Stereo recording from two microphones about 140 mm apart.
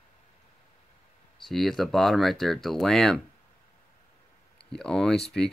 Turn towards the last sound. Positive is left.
turn(degrees=5)  # may be behind; listen again after turning